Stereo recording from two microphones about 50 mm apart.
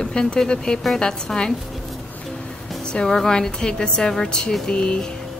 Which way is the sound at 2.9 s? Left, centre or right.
Centre.